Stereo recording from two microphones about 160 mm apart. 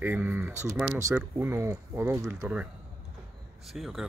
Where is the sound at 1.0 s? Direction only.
15° right (ahead or behind).